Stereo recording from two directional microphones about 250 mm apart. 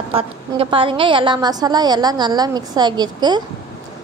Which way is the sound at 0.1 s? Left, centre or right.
Right.